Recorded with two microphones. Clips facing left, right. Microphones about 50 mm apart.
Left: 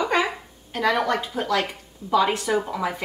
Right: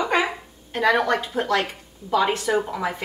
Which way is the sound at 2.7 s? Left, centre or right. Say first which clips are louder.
Even; centre.